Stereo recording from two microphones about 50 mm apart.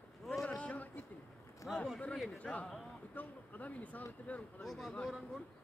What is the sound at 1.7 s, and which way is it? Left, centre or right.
Speech, centre.